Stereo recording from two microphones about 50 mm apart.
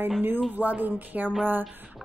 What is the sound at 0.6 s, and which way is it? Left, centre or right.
Speech, right.